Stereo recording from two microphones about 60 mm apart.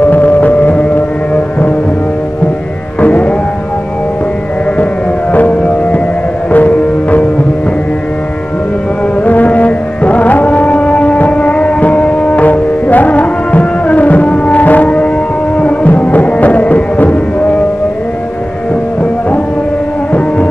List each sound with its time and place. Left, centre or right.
0.0 s music: left
3.0 s music: left
5.3 s music: left
9.2 s music: left
20.1 s music: left